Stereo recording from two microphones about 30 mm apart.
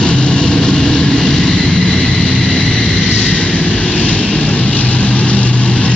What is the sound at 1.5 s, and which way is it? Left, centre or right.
Vehicle, left.